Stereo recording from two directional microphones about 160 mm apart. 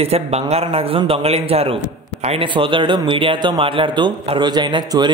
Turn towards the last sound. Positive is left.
turn(degrees=-30)  # may be behind; listen again after turning